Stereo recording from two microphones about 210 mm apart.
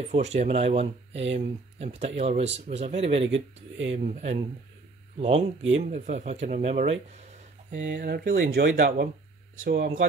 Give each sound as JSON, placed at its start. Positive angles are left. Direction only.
{"t": 0.1, "sound": "speech", "side_deg": -30}
{"t": 3.3, "sound": "speech", "side_deg": -60}
{"t": 3.9, "sound": "speech", "side_deg": -30}
{"t": 5.8, "sound": "speech", "side_deg": -35}
{"t": 7.7, "sound": "speech", "side_deg": -55}